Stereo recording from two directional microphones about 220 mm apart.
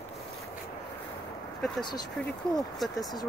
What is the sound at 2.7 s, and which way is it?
Speech, centre (ahead or behind).